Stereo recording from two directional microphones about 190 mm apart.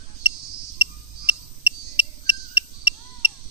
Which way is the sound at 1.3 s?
30° left (ahead or behind).